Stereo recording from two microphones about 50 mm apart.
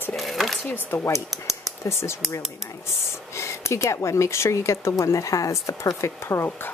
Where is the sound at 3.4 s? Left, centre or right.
Left.